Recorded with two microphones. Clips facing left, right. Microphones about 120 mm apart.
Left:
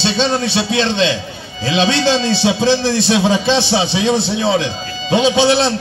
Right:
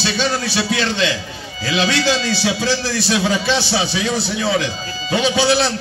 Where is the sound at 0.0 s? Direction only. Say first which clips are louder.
Left 4 dB; 25° left (ahead or behind).